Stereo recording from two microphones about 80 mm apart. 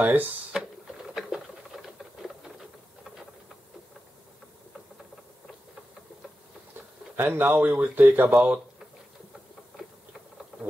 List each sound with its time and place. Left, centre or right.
0.0 s speech: right
0.5 s printer: centre
1.1 s patter: centre
7.2 s speech: right